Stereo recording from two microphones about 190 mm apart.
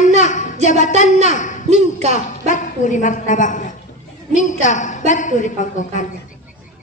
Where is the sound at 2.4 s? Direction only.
40° left (ahead or behind).